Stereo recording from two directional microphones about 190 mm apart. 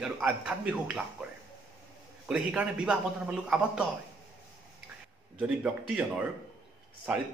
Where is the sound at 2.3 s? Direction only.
5° right (ahead or behind).